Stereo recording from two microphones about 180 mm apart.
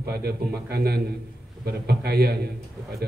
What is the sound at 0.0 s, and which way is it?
A man's voice, 60° right (ahead or behind).